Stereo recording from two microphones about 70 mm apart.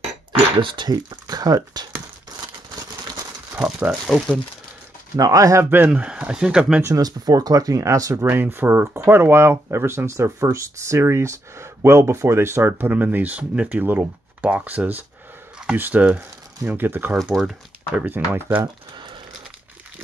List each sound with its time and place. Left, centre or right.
0.7 s speech: right
3.5 s speech: centre
5.1 s speech: right
5.6 s speech: right
5.9 s speech: centre
7.0 s speech: right
8.2 s speech: right
17.3 s speech: centre
18.0 s speech: right